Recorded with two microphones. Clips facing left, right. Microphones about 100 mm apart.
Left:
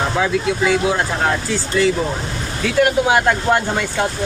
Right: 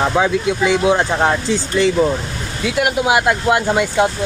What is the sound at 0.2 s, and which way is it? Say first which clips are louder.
Speech: right 2 dB; 20° right (ahead or behind).